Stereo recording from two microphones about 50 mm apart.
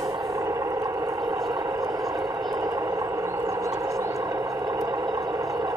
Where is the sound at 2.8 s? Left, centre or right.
Right.